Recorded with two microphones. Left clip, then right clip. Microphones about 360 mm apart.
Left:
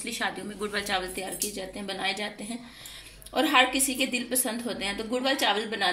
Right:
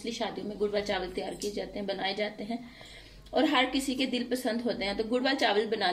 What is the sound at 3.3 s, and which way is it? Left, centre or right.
A woman's voice, centre.